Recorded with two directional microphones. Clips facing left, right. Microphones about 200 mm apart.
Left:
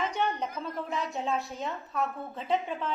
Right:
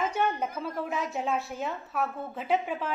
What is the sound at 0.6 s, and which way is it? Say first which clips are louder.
A woman's voice: right 2 dB; 5° right (ahead or behind).